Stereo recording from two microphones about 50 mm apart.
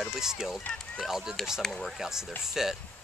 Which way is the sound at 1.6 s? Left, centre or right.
Centre.